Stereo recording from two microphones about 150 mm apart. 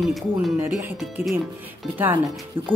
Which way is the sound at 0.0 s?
Centre (ahead or behind).